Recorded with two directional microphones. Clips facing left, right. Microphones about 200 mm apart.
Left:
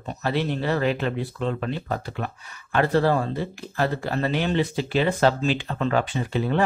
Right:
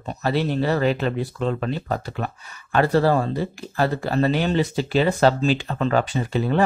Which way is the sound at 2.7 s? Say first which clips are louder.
Right 2 dB; 40° right (ahead or behind).